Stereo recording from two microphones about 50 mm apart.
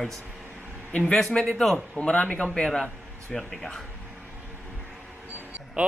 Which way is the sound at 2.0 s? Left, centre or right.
Left.